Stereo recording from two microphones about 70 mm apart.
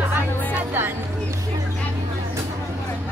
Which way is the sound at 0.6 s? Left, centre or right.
Right.